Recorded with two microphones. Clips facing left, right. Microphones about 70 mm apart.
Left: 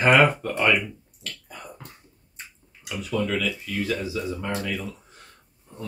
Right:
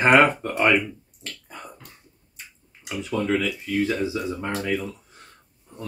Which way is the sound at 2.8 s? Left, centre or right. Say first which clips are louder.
Right 2 dB; right.